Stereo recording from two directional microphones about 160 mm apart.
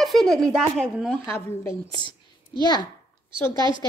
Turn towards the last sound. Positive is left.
turn(degrees=-30)  # may be behind; listen again after turning